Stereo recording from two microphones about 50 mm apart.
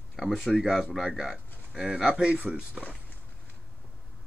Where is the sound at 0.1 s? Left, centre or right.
Centre.